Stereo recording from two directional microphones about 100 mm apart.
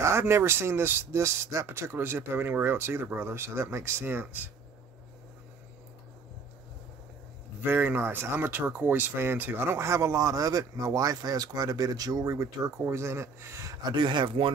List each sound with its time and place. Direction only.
0.0 s speech: 25° right (ahead or behind)
7.6 s speech: 20° right (ahead or behind)
13.8 s speech: 50° right (ahead or behind)